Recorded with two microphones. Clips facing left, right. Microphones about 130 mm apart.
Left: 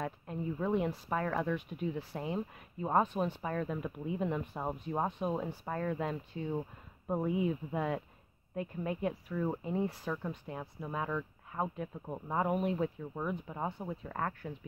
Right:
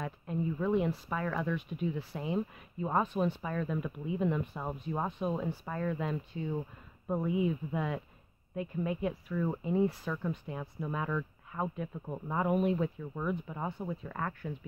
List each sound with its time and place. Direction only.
0.0 s speech: 35° left (ahead or behind)
10.8 s speech: 20° left (ahead or behind)